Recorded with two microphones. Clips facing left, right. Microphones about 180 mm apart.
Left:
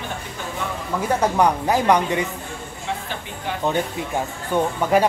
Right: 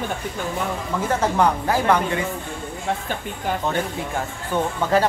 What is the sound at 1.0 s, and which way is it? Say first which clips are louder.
Speech: left 1 dB; 15° left (ahead or behind).